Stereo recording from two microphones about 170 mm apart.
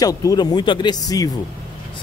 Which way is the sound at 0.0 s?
20° left (ahead or behind).